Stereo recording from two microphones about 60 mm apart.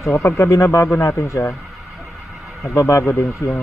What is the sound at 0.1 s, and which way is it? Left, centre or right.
Speech, left.